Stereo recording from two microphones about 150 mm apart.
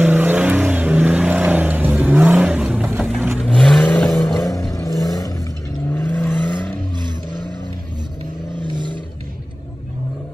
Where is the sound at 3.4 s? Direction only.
5° left (ahead or behind).